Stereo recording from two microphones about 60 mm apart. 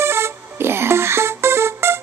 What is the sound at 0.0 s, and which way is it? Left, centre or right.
Music, right.